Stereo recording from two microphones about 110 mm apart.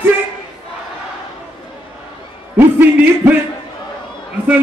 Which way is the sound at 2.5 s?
15° right (ahead or behind).